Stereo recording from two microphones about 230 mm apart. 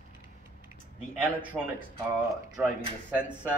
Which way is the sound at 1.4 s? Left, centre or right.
Right.